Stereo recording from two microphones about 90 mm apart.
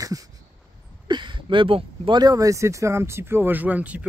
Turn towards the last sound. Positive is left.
turn(degrees=-15)  # may be behind; listen again after turning